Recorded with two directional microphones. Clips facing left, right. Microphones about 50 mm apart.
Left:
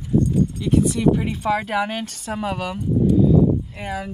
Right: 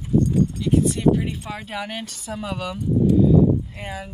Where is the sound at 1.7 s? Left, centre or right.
Left.